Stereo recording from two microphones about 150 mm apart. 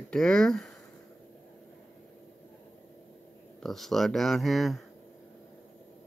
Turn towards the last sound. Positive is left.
turn(degrees=0)  # may be behind; listen again after turning